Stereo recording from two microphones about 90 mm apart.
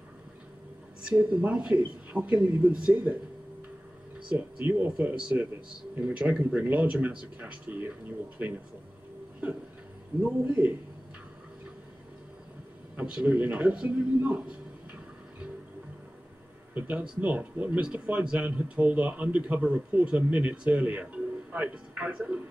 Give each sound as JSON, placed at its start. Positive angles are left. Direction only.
{"t": 1.0, "sound": "a man's voice", "side_deg": -10}
{"t": 4.3, "sound": "a man's voice", "side_deg": -15}
{"t": 10.2, "sound": "a man's voice", "side_deg": -10}
{"t": 12.9, "sound": "a man's voice", "side_deg": -10}
{"t": 16.7, "sound": "a man's voice", "side_deg": -20}